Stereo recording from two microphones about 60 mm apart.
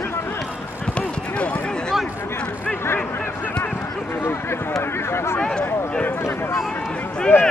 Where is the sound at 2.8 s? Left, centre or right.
Left.